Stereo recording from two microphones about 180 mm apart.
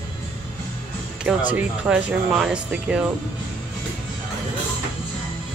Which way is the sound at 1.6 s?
5° right (ahead or behind).